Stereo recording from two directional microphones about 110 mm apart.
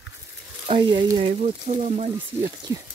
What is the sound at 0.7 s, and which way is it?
Speech, 50° right (ahead or behind).